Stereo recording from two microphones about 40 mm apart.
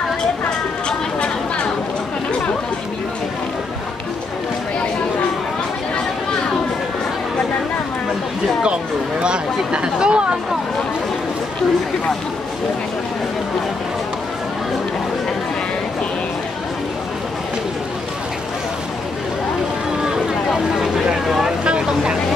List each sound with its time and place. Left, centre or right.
0.8 s a sound: left
9.2 s speech: right
20.7 s vehicle: centre